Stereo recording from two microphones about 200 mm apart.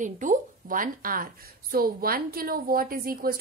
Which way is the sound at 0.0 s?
40° right (ahead or behind).